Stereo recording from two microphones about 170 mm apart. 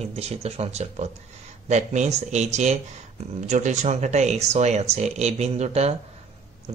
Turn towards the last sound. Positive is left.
turn(degrees=-40)  # may be behind; listen again after turning